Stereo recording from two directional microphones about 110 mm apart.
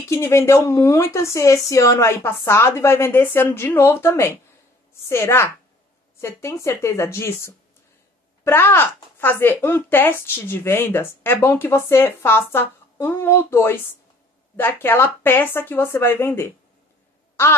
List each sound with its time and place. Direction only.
0.1 s a woman's voice: 25° left (ahead or behind)